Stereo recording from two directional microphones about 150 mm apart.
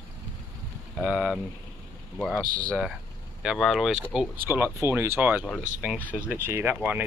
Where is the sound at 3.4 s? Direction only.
5° right (ahead or behind).